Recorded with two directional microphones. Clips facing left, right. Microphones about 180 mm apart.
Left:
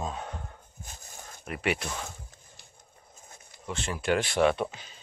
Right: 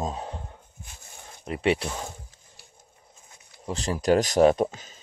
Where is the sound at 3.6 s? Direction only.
35° right (ahead or behind).